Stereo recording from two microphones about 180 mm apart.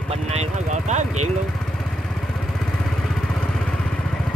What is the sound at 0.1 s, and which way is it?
Vehicle, 35° right (ahead or behind).